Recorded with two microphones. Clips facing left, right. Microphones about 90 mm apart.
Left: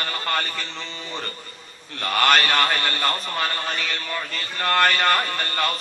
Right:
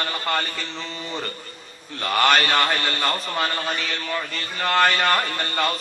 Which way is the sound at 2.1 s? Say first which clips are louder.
Right 1 dB; 15° right (ahead or behind).